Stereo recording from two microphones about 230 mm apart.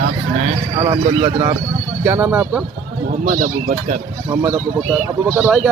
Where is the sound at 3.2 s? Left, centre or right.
Right.